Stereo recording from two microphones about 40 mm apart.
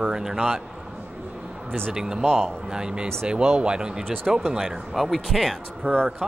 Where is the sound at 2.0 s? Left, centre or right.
Centre.